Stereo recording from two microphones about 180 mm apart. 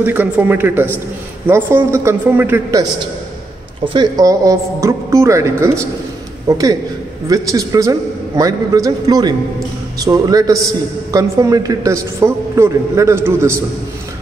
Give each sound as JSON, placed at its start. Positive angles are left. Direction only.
{"t": 0.0, "sound": "a man's voice", "side_deg": -10}